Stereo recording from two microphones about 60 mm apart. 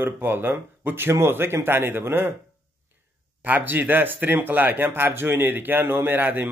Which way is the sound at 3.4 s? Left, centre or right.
Right.